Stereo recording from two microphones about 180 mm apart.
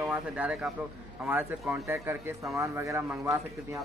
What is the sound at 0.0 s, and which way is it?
Speech, 5° right (ahead or behind).